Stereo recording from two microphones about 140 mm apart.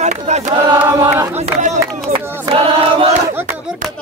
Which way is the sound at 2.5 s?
40° right (ahead or behind).